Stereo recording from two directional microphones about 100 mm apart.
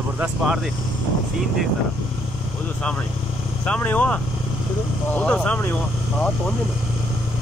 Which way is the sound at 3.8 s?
15° left (ahead or behind).